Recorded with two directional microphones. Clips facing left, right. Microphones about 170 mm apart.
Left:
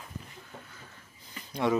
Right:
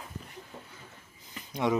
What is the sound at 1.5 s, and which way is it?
Speech, 15° right (ahead or behind).